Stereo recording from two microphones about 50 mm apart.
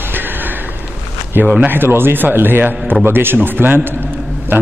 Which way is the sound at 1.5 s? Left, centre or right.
Right.